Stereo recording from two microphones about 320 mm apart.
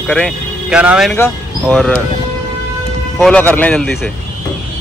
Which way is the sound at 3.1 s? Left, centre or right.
Centre.